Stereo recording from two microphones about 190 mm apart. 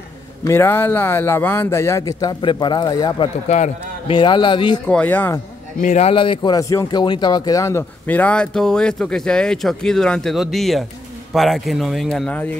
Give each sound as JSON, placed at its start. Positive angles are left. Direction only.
{"t": 0.4, "sound": "speech", "side_deg": 15}
{"t": 3.4, "sound": "a man's voice", "side_deg": 40}
{"t": 4.1, "sound": "a man's voice", "side_deg": 25}
{"t": 4.8, "sound": "speech", "side_deg": 10}
{"t": 5.8, "sound": "speech", "side_deg": 35}